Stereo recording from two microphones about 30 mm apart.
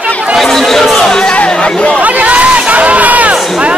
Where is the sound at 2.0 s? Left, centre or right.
Right.